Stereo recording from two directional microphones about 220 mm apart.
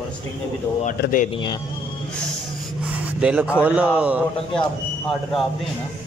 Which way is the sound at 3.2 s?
5° right (ahead or behind).